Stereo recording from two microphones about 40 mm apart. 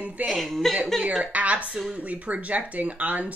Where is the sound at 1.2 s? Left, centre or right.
Right.